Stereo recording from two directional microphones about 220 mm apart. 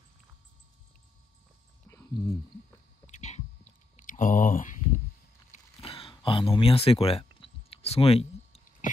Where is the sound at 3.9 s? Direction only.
35° left (ahead or behind).